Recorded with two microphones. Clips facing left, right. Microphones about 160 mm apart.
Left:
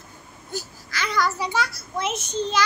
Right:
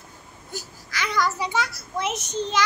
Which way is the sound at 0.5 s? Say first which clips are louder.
Left 2 dB; 15° right (ahead or behind).